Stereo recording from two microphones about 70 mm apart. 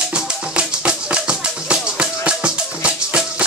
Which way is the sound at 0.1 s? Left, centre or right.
Centre.